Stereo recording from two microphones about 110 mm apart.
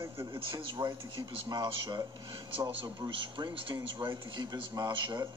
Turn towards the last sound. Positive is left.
turn(degrees=-40)  # may be behind; listen again after turning